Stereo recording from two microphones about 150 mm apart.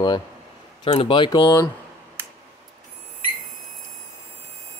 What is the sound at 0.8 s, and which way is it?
Speech, 35° left (ahead or behind).